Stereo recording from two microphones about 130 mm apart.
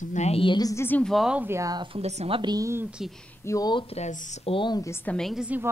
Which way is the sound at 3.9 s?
60° left (ahead or behind).